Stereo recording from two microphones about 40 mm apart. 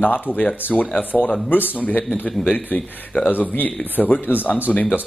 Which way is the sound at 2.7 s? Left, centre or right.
Left.